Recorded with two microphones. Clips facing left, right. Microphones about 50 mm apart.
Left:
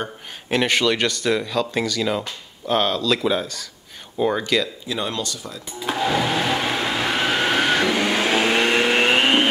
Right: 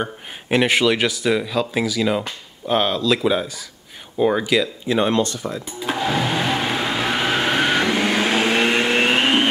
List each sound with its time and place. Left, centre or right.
0.0 s speech: centre
4.8 s speech: right
5.8 s vehicle: centre